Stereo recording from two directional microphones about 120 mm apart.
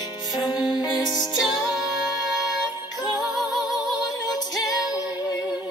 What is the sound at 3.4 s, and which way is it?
Music, centre (ahead or behind).